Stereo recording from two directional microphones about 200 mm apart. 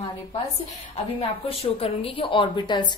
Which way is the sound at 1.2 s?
30° left (ahead or behind).